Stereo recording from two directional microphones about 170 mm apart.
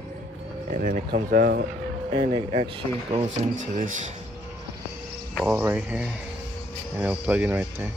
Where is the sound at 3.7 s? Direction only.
50° right (ahead or behind).